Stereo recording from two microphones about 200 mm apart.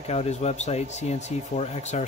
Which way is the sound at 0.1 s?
30° left (ahead or behind).